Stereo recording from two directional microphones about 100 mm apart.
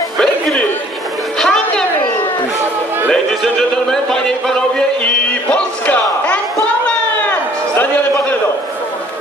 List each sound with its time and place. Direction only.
0.2 s music: 5° left (ahead or behind)
1.4 s chatter: 5° left (ahead or behind)
3.1 s speech: 5° left (ahead or behind)
7.2 s a sound: 20° left (ahead or behind)